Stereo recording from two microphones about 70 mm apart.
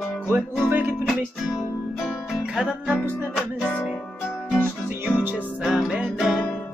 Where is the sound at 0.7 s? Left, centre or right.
Right.